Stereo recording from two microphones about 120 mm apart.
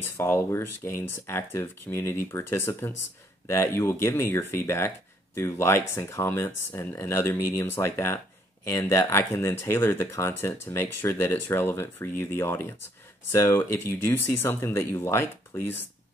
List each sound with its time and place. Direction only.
0.0 s speech: 20° left (ahead or behind)